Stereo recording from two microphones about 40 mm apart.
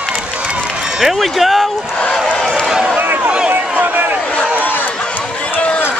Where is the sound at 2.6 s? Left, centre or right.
Centre.